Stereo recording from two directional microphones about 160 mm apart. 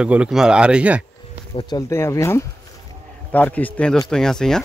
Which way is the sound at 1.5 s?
25° left (ahead or behind).